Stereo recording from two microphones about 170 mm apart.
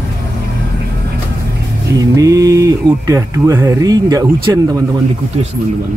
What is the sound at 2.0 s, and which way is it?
Speech, 20° right (ahead or behind).